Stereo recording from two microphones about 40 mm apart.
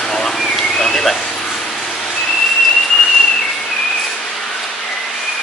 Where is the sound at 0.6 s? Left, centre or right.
Centre.